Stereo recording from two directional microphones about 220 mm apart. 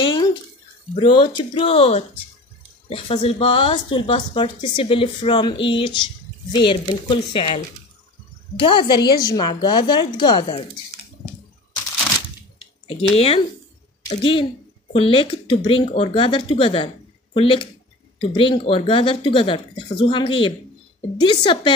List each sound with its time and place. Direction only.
0.0 s bathtub: 20° left (ahead or behind)
0.9 s speech: 25° left (ahead or behind)
12.8 s speech: 25° left (ahead or behind)